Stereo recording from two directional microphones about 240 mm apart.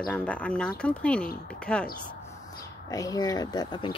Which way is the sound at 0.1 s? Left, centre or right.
Centre.